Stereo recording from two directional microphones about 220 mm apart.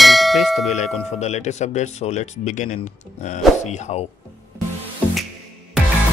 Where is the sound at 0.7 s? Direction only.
30° left (ahead or behind).